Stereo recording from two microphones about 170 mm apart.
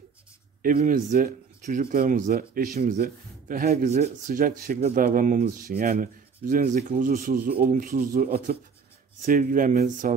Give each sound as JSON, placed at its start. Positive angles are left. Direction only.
{"t": 0.6, "sound": "speech", "side_deg": -55}